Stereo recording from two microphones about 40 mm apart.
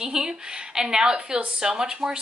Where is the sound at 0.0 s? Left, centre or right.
Centre.